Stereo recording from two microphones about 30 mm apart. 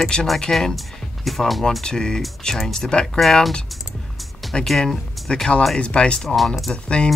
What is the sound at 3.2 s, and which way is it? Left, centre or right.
Speech, centre.